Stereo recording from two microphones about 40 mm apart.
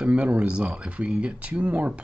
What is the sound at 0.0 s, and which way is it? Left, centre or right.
Speech, right.